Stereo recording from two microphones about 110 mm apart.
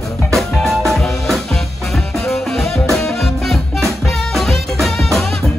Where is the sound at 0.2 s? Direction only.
5° left (ahead or behind).